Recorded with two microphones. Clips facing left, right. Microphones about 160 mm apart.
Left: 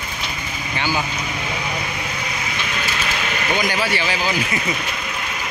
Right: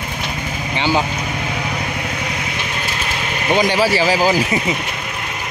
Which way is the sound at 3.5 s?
30° right (ahead or behind).